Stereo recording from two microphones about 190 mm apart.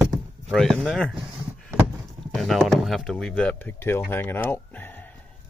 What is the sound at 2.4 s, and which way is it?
Speech, centre (ahead or behind).